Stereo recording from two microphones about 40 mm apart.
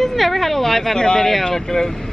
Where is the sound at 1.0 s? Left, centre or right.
Centre.